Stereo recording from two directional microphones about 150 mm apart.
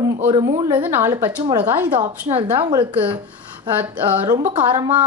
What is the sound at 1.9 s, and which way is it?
A woman's voice, 35° right (ahead or behind).